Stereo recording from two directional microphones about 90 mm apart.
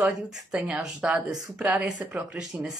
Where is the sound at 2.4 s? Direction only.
5° right (ahead or behind).